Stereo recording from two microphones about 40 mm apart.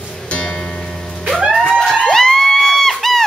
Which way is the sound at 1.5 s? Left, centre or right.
Centre.